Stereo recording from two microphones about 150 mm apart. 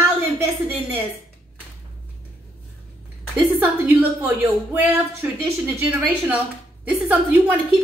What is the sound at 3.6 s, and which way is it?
A woman's voice, 10° right (ahead or behind).